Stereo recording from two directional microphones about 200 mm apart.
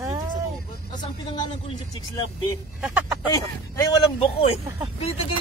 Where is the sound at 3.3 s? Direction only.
15° left (ahead or behind).